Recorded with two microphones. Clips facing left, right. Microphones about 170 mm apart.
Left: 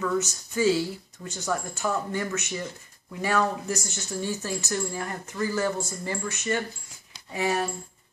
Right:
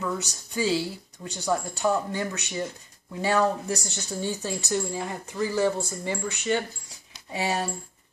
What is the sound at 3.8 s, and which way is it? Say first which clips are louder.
Speech: even; 15° right (ahead or behind).